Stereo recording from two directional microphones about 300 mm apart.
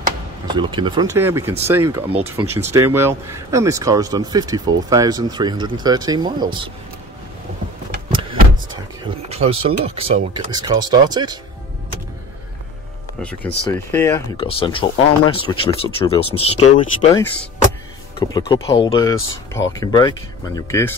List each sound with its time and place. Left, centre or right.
0.5 s speech: centre
8.1 s vehicle: centre
9.3 s speech: centre
13.2 s speech: centre
18.3 s speech: centre